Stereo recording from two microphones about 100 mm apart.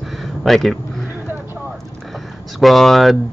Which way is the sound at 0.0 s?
Centre (ahead or behind).